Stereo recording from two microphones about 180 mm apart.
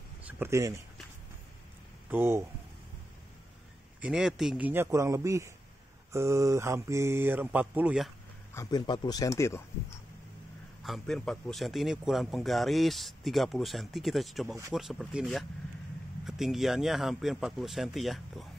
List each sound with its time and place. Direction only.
0.2 s speech: 10° right (ahead or behind)
2.0 s speech: 10° right (ahead or behind)
4.0 s speech: 5° right (ahead or behind)
8.5 s speech: 20° left (ahead or behind)
10.8 s speech: centre (ahead or behind)